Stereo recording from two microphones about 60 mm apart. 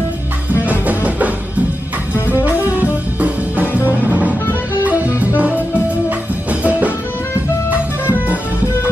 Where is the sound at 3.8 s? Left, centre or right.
Right.